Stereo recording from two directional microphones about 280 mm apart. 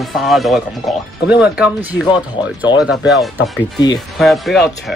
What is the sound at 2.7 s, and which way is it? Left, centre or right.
Speech, centre.